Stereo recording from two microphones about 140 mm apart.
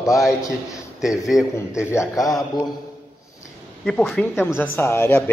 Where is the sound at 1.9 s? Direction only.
20° left (ahead or behind).